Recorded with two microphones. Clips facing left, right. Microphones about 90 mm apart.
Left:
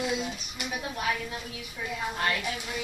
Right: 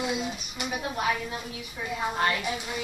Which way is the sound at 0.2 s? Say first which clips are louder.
Right 2 dB; 5° right (ahead or behind).